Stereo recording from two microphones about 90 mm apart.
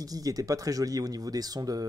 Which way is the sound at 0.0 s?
40° right (ahead or behind).